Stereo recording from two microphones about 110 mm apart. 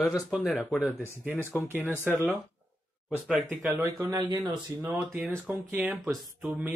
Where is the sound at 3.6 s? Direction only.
25° right (ahead or behind).